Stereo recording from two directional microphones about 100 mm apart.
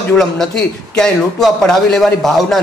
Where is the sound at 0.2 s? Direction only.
5° left (ahead or behind).